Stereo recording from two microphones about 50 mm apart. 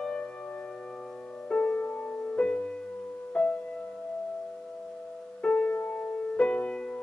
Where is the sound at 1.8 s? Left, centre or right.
Left.